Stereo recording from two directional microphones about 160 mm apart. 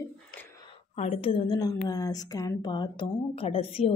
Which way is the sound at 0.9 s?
40° left (ahead or behind).